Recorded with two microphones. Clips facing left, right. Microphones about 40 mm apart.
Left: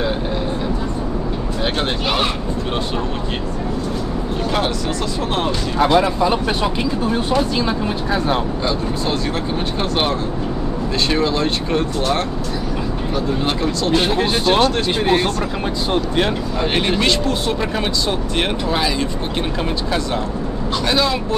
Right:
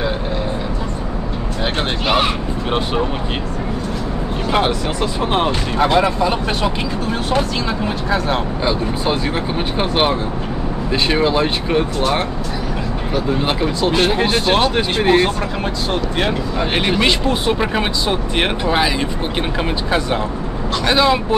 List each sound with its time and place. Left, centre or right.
8.6 s speech: centre
16.7 s speech: centre
20.8 s speech: right